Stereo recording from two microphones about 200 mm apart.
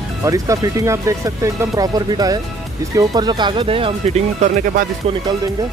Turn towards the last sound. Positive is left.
turn(degrees=-30)  # may be behind; listen again after turning